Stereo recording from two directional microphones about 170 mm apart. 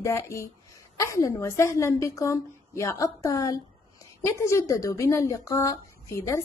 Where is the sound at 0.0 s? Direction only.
15° left (ahead or behind).